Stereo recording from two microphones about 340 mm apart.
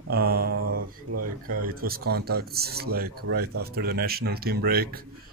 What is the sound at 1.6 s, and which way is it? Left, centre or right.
Speech, right.